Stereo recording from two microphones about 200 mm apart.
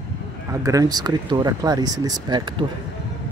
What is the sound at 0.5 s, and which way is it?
Speech, 15° right (ahead or behind).